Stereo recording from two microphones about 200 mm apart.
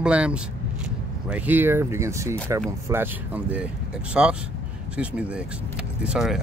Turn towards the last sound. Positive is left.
turn(degrees=0)  # may be behind; listen again after turning